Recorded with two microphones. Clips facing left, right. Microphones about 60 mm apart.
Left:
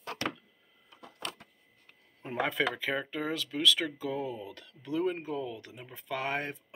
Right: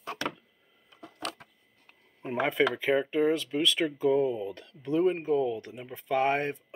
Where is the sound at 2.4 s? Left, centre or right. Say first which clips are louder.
Right 4 dB; right.